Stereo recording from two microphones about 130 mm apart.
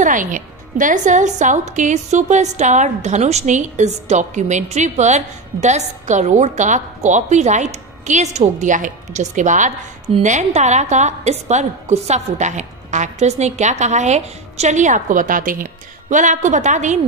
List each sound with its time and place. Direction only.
0.0 s a woman's voice: 85° right
16.1 s a woman's voice: 75° right (ahead or behind)